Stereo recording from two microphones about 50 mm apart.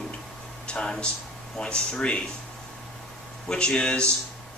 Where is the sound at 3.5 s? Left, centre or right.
Centre.